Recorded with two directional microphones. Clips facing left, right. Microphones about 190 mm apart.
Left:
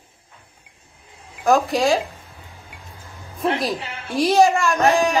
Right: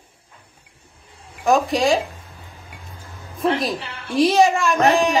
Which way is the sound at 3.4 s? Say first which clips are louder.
Right 1 dB; centre (ahead or behind).